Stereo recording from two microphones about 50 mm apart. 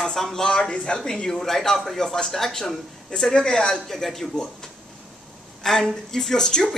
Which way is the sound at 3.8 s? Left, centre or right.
Centre.